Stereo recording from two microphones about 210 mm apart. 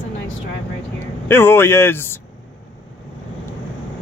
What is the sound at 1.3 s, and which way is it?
Speech, 10° left (ahead or behind).